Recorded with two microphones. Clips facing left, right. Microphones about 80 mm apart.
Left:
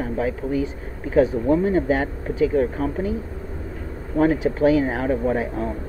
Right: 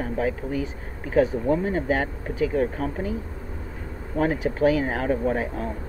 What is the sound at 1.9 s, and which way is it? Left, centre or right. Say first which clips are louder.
Speech: left 3 dB; centre.